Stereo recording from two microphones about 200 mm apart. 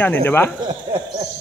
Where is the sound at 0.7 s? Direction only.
20° right (ahead or behind).